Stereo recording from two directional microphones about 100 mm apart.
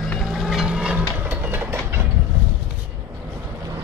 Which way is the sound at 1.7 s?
25° right (ahead or behind).